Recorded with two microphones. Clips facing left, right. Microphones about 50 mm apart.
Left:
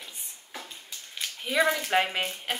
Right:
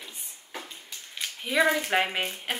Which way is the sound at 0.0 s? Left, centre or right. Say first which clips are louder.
Even; centre.